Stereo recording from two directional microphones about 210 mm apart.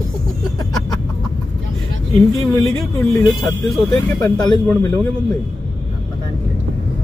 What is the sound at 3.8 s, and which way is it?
Speech, 15° left (ahead or behind).